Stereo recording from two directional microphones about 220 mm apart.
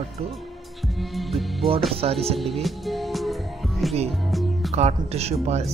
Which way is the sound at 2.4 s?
Centre (ahead or behind).